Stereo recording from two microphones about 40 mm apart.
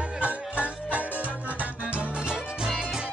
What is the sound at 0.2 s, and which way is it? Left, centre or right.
Music, right.